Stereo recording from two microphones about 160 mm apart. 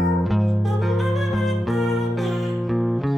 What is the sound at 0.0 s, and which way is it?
Music, centre (ahead or behind).